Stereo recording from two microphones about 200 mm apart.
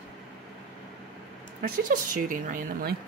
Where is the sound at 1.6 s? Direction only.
45° right (ahead or behind).